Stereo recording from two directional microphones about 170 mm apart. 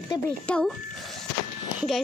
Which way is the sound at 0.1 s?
25° left (ahead or behind).